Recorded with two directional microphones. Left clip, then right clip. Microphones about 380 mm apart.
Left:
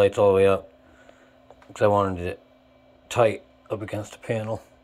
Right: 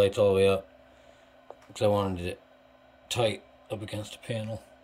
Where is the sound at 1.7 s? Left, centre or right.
Centre.